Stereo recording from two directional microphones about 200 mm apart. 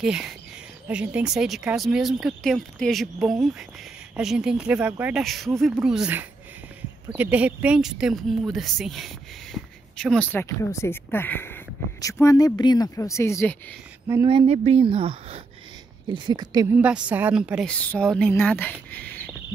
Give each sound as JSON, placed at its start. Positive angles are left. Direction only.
{"t": 0.0, "sound": "speech", "side_deg": -5}
{"t": 14.2, "sound": "speech", "side_deg": -25}
{"t": 16.7, "sound": "speech", "side_deg": -5}